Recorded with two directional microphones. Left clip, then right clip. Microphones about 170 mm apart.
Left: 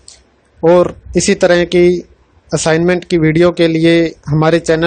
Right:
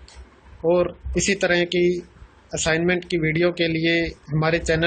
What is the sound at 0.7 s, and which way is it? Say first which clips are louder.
Speech: left 10 dB; 55° left (ahead or behind).